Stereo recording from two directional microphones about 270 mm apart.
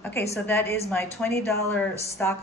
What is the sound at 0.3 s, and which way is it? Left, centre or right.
A woman's voice, centre.